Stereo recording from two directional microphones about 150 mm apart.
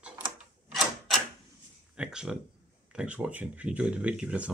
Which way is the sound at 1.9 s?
5° right (ahead or behind).